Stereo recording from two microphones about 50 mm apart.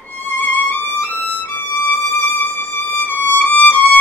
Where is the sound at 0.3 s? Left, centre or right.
Left.